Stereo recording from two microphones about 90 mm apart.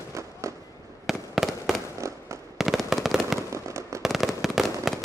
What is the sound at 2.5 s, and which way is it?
Fireworks, centre (ahead or behind).